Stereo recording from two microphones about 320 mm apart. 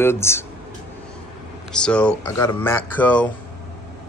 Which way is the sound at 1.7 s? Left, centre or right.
Centre.